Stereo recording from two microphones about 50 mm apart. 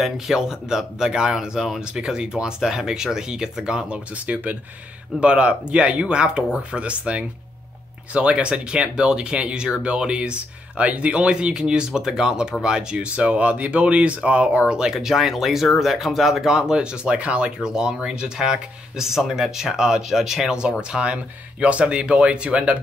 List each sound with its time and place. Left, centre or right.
0.0 s speech: centre
14.7 s speech: centre
20.9 s speech: right